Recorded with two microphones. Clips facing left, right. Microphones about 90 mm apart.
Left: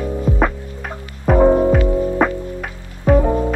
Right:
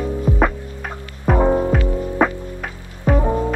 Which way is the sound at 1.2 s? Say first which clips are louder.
Left 4 dB; centre (ahead or behind).